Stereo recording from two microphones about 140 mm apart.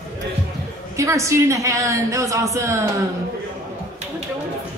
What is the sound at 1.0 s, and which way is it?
A woman's voice, 20° right (ahead or behind).